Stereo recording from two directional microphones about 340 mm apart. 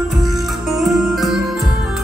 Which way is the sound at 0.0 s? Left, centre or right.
Centre.